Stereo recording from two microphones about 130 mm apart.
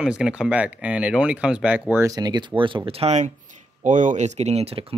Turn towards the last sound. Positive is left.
turn(degrees=-45)  # may be behind; listen again after turning